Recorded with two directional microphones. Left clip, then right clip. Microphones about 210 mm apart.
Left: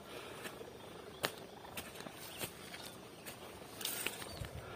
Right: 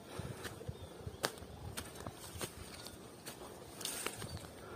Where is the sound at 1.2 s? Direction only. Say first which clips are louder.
Even; 15° right (ahead or behind).